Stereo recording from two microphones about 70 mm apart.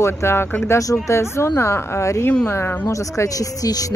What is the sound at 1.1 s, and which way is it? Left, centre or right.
Speech, left.